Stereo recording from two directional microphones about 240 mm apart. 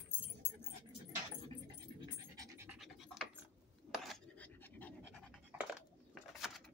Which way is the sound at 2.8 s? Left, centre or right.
Centre.